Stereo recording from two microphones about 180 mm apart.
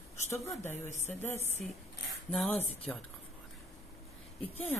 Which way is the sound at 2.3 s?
5° left (ahead or behind).